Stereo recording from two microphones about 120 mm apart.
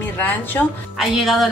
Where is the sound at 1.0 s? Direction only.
Centre (ahead or behind).